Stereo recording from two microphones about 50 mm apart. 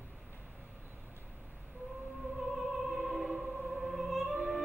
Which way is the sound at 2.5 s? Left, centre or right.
Centre.